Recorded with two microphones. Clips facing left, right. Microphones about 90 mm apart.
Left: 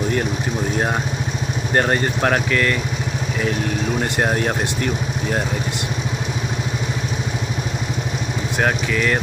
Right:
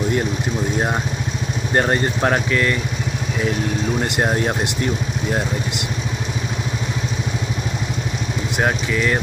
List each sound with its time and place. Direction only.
1.8 s speech: 20° right (ahead or behind)
8.5 s speech: 20° right (ahead or behind)